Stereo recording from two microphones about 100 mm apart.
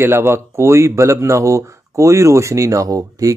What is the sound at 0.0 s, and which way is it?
Speech, 25° right (ahead or behind).